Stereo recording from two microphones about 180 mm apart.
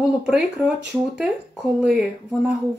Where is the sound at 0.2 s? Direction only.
5° right (ahead or behind).